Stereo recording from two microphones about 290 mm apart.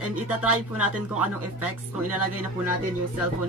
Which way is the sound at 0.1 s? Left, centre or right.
Centre.